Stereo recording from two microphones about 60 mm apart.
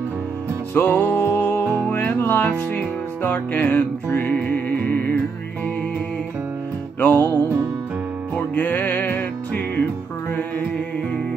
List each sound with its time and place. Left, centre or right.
0.7 s music: left
7.0 s music: left
8.5 s music: left